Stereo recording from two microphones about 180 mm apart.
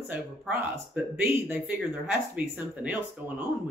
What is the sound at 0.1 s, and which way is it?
Speech, 10° right (ahead or behind).